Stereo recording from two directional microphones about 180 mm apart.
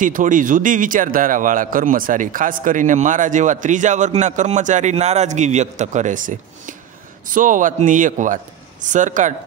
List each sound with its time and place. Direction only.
0.0 s speech: 45° right (ahead or behind)